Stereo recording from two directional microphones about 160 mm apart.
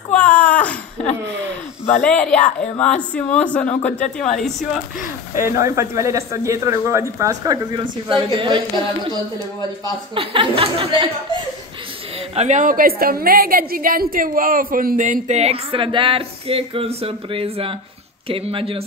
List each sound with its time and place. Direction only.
0.1 s a sound: 10° left (ahead or behind)
2.0 s speech: 5° left (ahead or behind)
5.3 s speech: 20° right (ahead or behind)
10.1 s speech: 35° right (ahead or behind)
12.4 s a woman's voice: 50° right (ahead or behind)
15.2 s speech: 45° right (ahead or behind)